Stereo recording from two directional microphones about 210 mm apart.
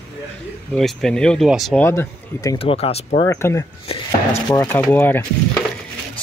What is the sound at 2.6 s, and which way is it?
Speech, 30° left (ahead or behind).